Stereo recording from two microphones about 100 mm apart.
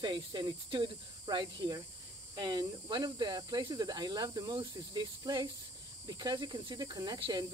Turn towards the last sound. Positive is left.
turn(degrees=-50)  # may be behind; listen again after turning